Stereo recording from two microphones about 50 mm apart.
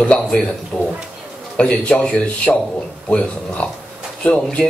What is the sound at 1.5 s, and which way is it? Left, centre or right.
A man's voice, left.